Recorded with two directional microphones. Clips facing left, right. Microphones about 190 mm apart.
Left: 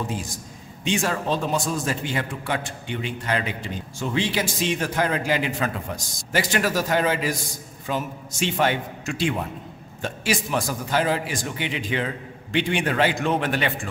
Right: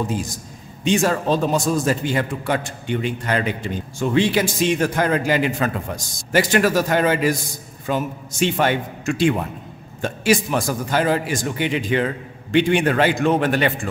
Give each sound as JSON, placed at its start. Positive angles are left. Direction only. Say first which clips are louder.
{"t": 0.8, "sound": "a man's voice", "louder": "right 6 dB", "side_deg": -40}